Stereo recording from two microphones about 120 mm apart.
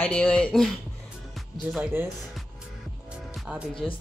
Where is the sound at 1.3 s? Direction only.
Centre (ahead or behind).